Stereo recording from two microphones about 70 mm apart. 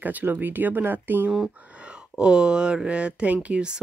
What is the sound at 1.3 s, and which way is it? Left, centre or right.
Speech, centre.